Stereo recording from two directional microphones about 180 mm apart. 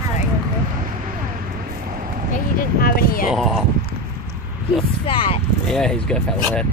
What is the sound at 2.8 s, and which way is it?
Speech, 55° left (ahead or behind).